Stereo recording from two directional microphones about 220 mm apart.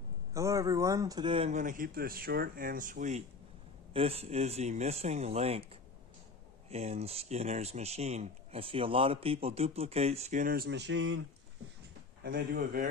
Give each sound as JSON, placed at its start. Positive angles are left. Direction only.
{"t": 0.3, "sound": "a man's voice", "side_deg": -15}
{"t": 6.7, "sound": "speech", "side_deg": -30}
{"t": 12.2, "sound": "a man's voice", "side_deg": -45}